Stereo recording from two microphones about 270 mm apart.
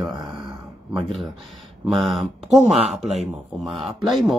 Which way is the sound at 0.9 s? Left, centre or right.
Centre.